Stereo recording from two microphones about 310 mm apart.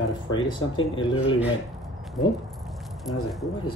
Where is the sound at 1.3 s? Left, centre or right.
Centre.